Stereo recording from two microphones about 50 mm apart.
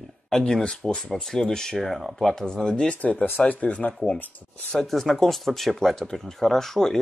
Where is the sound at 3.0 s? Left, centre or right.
Left.